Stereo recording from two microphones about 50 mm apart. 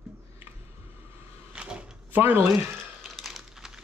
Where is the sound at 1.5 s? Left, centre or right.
Centre.